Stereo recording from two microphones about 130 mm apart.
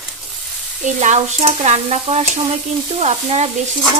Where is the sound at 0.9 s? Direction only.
60° right (ahead or behind).